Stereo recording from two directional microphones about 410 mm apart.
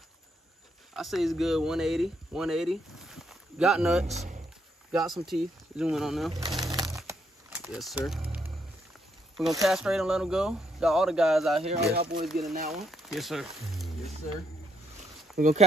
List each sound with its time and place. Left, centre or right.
0.9 s speech: centre
4.0 s speech: centre
4.9 s a sound: centre
9.4 s speech: centre
11.6 s speech: centre
12.3 s speech: centre
12.5 s speech: right
12.8 s music: centre
15.3 s speech: centre